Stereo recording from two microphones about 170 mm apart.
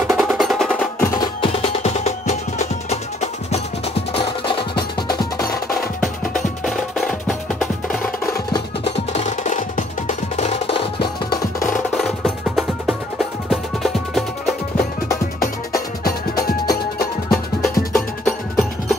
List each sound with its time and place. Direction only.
0.1 s percussion: centre (ahead or behind)
1.0 s music: 20° left (ahead or behind)
1.7 s music: 40° left (ahead or behind)
4.1 s percussion: 30° left (ahead or behind)
5.9 s music: 5° left (ahead or behind)
8.8 s music: 40° left (ahead or behind)
11.9 s music: centre (ahead or behind)
17.3 s music: centre (ahead or behind)